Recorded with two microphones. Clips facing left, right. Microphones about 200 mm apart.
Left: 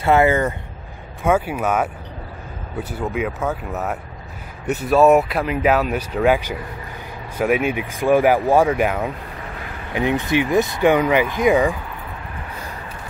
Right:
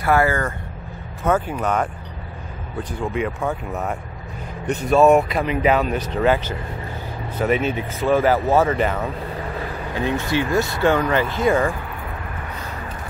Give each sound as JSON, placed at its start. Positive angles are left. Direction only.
{"t": 0.0, "sound": "speech", "side_deg": 20}
{"t": 1.2, "sound": "speech", "side_deg": 10}